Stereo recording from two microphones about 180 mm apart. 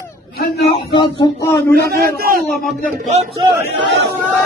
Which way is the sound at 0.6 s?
30° left (ahead or behind).